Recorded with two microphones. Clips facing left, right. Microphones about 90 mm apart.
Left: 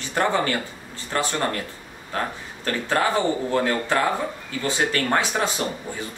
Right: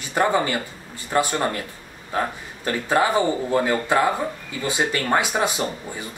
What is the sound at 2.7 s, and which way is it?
Speech, 15° right (ahead or behind).